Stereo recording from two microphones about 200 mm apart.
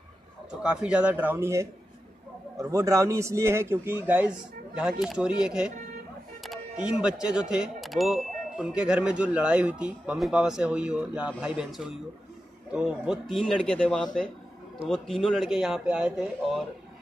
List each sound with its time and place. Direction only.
0.6 s a man's voice: 5° right (ahead or behind)